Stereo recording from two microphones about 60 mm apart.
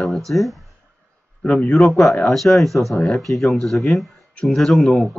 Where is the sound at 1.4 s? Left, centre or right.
Left.